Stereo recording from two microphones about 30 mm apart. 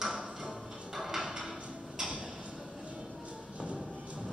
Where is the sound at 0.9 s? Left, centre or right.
Centre.